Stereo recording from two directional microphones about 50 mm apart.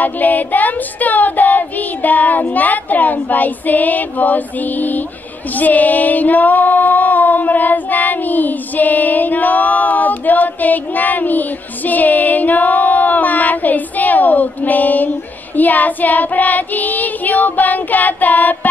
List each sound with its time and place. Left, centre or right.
0.0 s child singing: left
5.5 s female singing: left
15.5 s child singing: left